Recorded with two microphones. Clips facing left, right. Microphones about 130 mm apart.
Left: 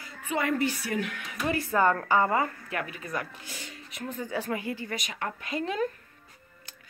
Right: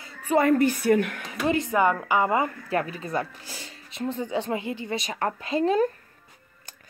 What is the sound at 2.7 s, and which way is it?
Speech, 35° right (ahead or behind).